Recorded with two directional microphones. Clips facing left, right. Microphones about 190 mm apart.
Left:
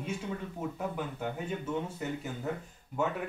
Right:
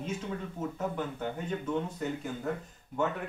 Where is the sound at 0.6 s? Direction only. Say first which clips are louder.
Right 3 dB; 10° left (ahead or behind).